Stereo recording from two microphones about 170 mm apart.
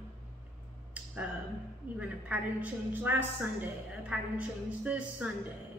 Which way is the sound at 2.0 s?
10° right (ahead or behind).